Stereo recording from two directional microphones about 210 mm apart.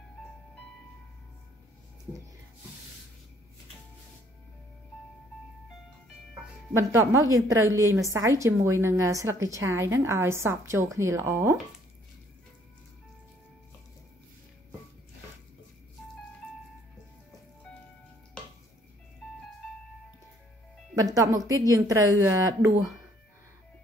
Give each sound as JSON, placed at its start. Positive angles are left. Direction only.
{"t": 6.7, "sound": "a woman's voice", "side_deg": -15}
{"t": 20.9, "sound": "a woman's voice", "side_deg": -15}